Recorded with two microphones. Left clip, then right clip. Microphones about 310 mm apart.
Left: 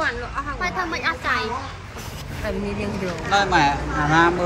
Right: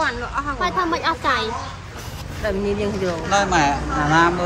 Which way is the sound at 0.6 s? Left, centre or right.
Right.